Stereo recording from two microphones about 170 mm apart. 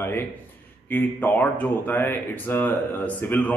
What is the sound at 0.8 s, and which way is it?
Speech, 10° left (ahead or behind).